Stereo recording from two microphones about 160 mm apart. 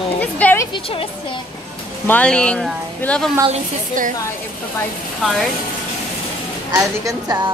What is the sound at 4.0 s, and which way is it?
Speech, 55° right (ahead or behind).